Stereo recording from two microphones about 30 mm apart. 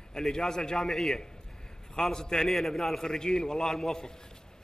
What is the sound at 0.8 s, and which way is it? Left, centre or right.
A man's voice, centre.